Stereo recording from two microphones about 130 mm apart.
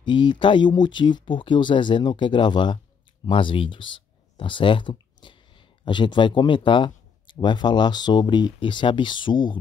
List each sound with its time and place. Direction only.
0.0 s speech: 35° left (ahead or behind)